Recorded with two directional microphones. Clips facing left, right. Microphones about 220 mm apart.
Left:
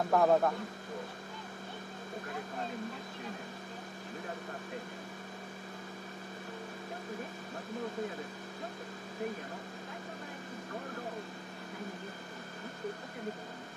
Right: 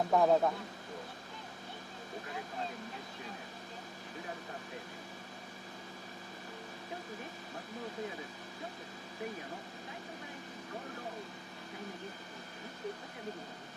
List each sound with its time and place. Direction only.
0.1 s speech: centre (ahead or behind)